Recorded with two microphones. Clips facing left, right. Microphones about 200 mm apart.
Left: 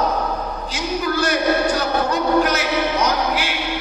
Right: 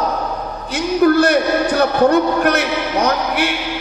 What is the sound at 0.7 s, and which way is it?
A man's voice, 60° right (ahead or behind).